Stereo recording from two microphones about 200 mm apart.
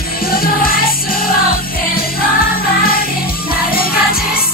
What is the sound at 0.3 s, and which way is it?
Music, 45° left (ahead or behind).